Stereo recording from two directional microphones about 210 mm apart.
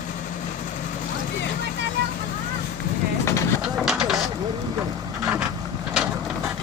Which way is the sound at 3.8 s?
Centre (ahead or behind).